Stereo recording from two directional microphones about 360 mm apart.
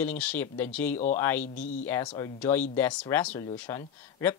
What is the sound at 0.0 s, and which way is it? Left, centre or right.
Speech, centre.